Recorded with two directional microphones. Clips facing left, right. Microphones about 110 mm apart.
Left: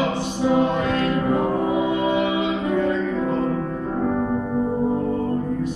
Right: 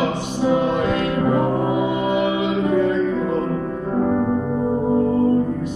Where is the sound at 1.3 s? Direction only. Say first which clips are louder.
Right 2 dB; 5° right (ahead or behind).